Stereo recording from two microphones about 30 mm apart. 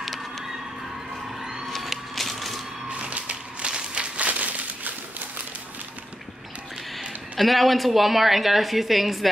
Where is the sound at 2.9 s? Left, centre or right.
Right.